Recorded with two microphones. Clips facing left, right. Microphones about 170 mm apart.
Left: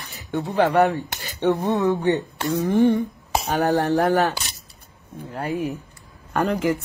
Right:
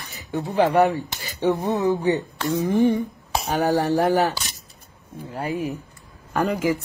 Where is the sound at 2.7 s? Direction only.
15° right (ahead or behind).